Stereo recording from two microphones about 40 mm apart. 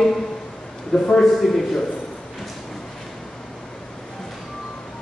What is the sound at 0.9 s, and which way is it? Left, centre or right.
Speech, centre.